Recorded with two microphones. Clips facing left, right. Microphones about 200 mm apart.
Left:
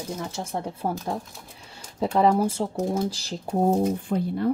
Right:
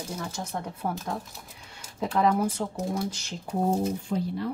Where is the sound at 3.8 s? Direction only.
50° left (ahead or behind).